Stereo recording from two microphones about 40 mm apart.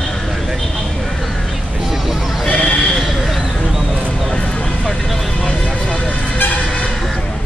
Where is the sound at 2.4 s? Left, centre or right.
Left.